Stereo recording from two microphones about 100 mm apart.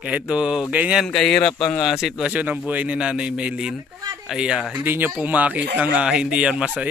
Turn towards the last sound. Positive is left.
turn(degrees=-10)  # may be behind; listen again after turning